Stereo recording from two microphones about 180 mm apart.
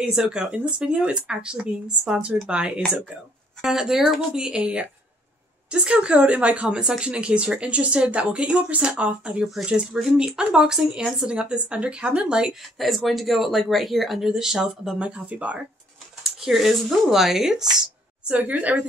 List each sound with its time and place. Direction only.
0.0 s a woman's voice: 5° right (ahead or behind)